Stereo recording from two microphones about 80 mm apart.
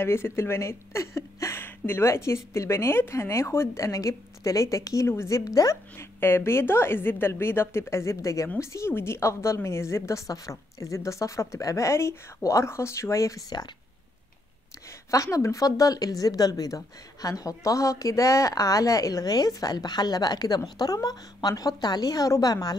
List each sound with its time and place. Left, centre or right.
0.0 s speech: left
5.4 s a woman's voice: left
5.9 s speech: left
15.0 s a woman's voice: left